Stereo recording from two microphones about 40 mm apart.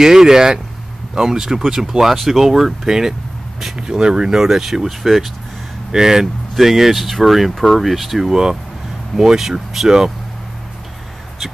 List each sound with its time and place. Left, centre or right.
0.0 s speech: centre
3.7 s speech: right